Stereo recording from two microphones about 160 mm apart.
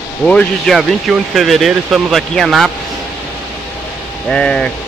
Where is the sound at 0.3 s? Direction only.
5° left (ahead or behind).